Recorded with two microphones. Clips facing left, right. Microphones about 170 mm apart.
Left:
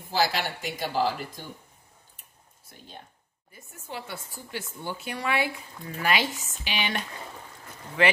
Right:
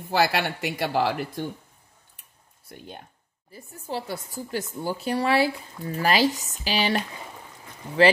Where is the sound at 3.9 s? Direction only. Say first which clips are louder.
Right 6 dB; 35° right (ahead or behind).